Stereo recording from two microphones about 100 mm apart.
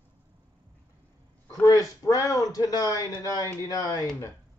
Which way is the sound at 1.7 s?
35° left (ahead or behind).